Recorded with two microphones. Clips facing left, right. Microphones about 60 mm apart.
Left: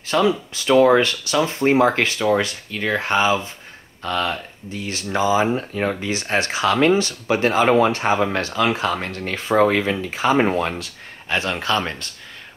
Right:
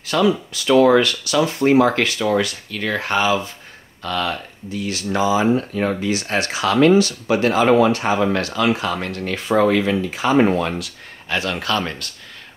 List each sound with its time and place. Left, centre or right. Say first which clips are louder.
0.0 s speech: right 1 dB; left